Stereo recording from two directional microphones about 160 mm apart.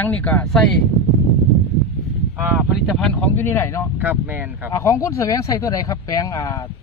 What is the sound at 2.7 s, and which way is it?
Speech, centre (ahead or behind).